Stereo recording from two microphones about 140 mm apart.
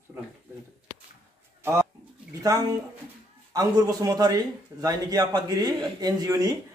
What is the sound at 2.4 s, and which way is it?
A man's voice, 25° right (ahead or behind).